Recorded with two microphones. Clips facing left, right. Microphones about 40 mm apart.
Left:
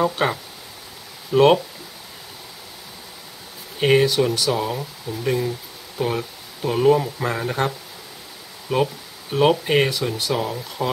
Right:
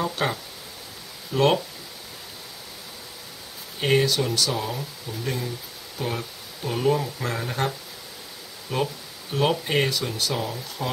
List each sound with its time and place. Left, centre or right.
0.0 s speech: centre
3.8 s speech: centre